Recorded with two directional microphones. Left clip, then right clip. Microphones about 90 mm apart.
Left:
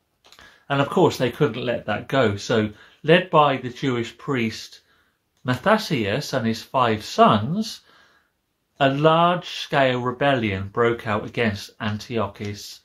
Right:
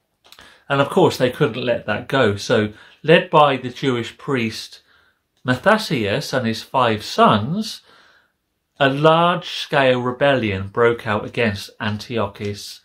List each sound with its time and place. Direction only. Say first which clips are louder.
0.3 s speech: right 4 dB; 30° right (ahead or behind)